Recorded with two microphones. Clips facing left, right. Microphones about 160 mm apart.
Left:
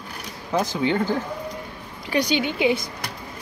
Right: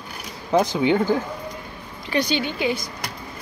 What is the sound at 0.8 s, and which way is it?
Speech, 15° right (ahead or behind).